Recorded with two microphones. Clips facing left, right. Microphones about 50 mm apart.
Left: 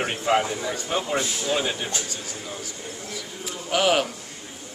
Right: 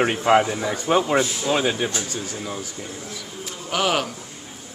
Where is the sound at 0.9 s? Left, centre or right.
Right.